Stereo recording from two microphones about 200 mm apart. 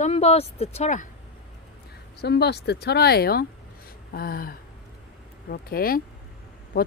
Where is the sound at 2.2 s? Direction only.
55° left (ahead or behind).